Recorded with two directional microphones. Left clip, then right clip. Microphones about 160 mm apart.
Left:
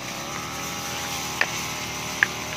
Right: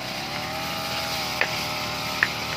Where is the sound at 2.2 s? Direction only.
80° left.